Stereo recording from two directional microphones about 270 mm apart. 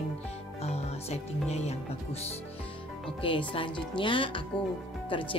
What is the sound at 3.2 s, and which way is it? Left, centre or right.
A woman's voice, centre.